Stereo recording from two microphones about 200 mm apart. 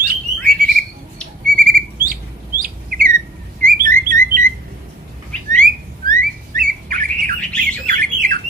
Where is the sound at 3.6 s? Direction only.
45° right (ahead or behind).